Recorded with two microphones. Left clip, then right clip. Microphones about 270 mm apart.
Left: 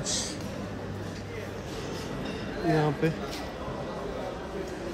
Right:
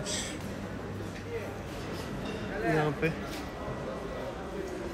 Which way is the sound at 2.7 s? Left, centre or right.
Centre.